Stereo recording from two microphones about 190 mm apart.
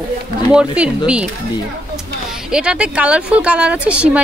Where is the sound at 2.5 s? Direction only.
5° right (ahead or behind).